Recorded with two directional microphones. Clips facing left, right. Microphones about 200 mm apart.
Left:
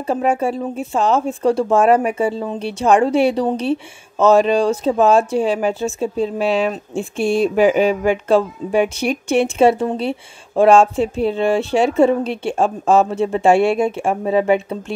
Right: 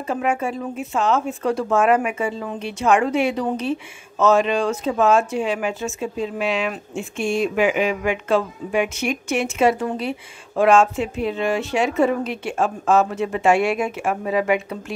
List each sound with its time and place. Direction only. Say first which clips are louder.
0.0 s speech: left 5 dB; 35° left (ahead or behind)